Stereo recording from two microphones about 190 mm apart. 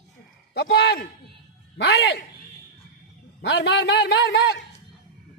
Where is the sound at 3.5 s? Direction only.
65° left (ahead or behind).